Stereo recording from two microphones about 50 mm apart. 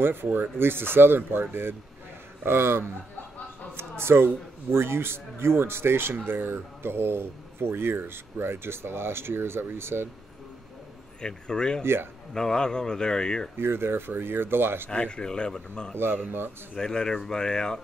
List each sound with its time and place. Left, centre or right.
0.0 s speech: right
4.0 s a man's voice: right
11.1 s speech: centre
11.8 s speech: right
12.4 s speech: centre
13.6 s speech: right
14.9 s speech: centre